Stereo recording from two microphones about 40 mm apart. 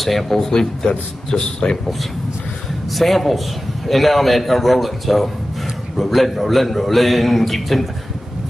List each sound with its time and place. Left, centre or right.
0.0 s speech: centre
2.9 s a man's voice: centre